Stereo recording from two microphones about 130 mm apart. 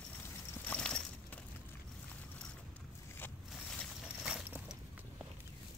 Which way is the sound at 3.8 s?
5° right (ahead or behind).